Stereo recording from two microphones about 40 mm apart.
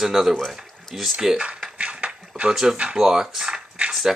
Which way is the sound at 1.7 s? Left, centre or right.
Right.